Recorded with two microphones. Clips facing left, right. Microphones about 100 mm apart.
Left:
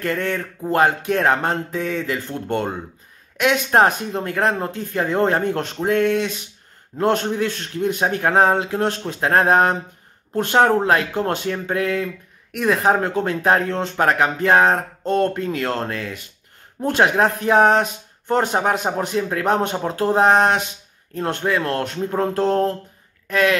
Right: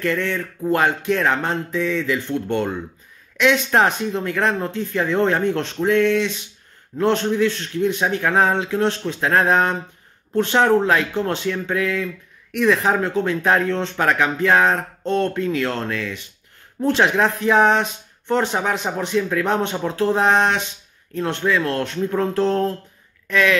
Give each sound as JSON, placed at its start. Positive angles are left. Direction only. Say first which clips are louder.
{"t": 0.0, "sound": "speech", "louder": "right 1 dB", "side_deg": 45}